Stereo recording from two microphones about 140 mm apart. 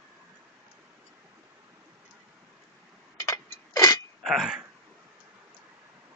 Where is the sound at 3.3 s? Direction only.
25° left (ahead or behind).